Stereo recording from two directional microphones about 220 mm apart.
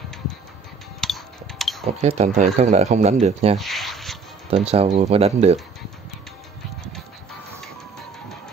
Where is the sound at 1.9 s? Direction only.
30° right (ahead or behind).